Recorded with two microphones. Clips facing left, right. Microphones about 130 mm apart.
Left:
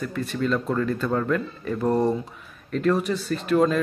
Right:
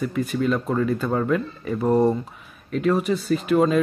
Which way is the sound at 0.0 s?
5° right (ahead or behind).